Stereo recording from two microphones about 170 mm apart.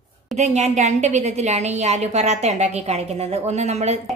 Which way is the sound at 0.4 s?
40° right (ahead or behind).